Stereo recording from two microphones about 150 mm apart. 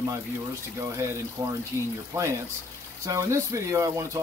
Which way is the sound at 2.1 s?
20° right (ahead or behind).